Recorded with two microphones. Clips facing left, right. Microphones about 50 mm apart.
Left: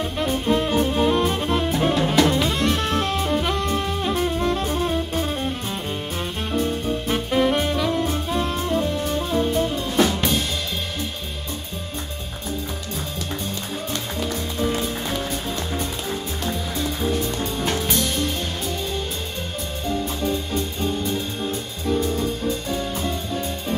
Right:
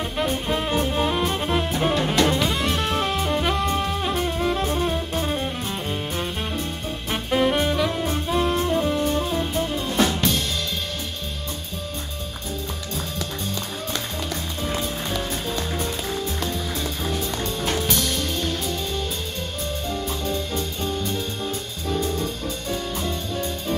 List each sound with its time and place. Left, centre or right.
0.2 s music: centre
2.3 s saxophone: centre
7.1 s music: centre
17.0 s music: centre
19.9 s music: centre